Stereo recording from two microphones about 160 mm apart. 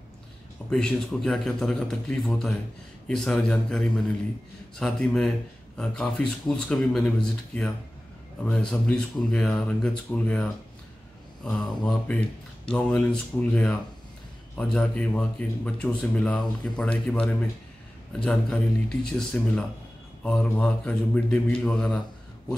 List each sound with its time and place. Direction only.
0.7 s speech: 5° left (ahead or behind)